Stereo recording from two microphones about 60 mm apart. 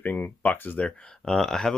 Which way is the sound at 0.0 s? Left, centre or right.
Left.